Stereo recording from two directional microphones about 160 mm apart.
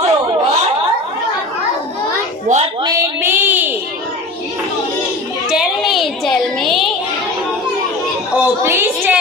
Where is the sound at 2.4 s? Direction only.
45° right (ahead or behind).